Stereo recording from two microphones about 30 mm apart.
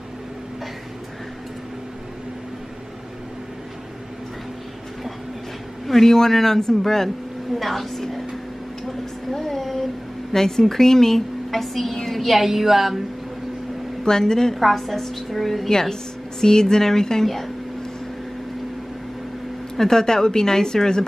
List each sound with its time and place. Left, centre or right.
5.9 s a woman's voice: centre
7.5 s a woman's voice: centre
9.3 s a sound: centre
10.3 s a woman's voice: centre
12.2 s a woman's voice: centre
14.0 s a woman's voice: left
14.5 s a woman's voice: centre
15.7 s speech: centre
19.8 s a woman's voice: centre